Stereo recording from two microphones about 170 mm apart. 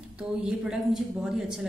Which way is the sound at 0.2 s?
5° right (ahead or behind).